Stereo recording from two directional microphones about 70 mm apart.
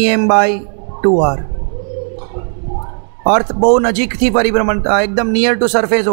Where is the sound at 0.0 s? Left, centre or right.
Right.